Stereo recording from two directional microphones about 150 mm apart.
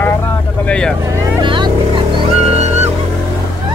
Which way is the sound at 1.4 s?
35° right (ahead or behind).